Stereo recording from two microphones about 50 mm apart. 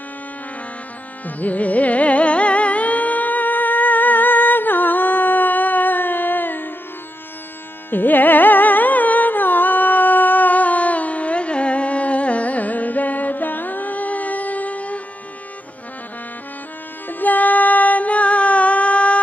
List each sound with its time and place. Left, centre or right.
1.2 s carnatic music: left
7.9 s carnatic music: left
17.1 s music: left